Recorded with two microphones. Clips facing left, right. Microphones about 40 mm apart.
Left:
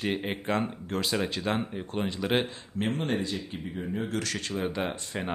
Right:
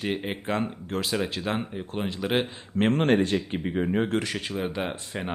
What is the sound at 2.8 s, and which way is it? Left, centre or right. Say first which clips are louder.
Speech: right 8 dB; right.